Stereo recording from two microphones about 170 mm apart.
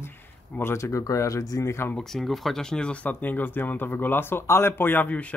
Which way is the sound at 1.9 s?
Centre (ahead or behind).